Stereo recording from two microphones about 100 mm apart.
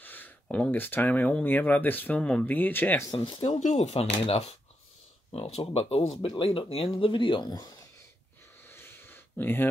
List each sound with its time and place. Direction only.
0.0 s speech: 20° left (ahead or behind)
3.1 s speech: 45° left (ahead or behind)
3.3 s speech: 90° left
6.4 s speech: 65° left (ahead or behind); by 7.7 s 45° left (ahead or behind)
8.6 s a sound: 25° left (ahead or behind)